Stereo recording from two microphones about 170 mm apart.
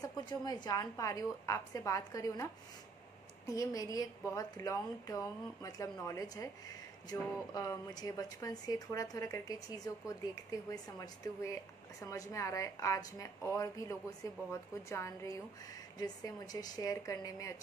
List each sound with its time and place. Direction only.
0.0 s a woman's voice: 25° left (ahead or behind)
3.5 s a woman's voice: 20° left (ahead or behind)